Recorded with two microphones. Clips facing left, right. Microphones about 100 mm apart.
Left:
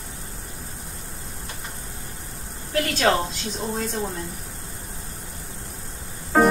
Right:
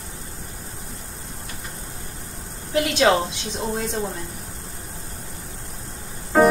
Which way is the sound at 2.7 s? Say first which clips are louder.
Right 3 dB; 20° right (ahead or behind).